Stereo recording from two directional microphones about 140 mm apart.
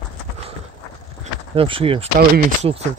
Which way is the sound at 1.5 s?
40° right (ahead or behind).